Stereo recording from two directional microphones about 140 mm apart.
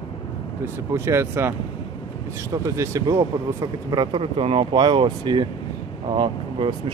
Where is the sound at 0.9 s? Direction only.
20° right (ahead or behind).